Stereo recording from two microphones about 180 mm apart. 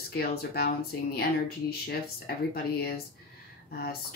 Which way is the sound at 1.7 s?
60° left (ahead or behind).